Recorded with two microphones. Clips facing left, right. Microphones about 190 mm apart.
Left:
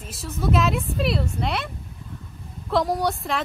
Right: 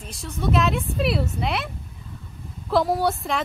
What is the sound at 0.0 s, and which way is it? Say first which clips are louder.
A woman's voice: even; 5° left (ahead or behind).